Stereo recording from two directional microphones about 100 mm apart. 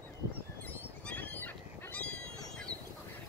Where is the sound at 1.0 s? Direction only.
15° left (ahead or behind).